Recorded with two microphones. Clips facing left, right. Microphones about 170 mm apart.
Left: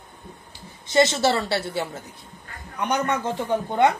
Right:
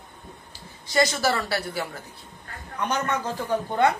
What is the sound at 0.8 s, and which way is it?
A woman's voice, 25° left (ahead or behind).